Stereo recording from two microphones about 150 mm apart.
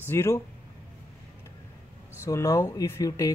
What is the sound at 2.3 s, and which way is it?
Speech, 20° left (ahead or behind).